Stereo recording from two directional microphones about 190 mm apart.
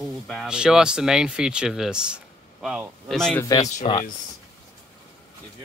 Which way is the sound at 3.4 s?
20° left (ahead or behind).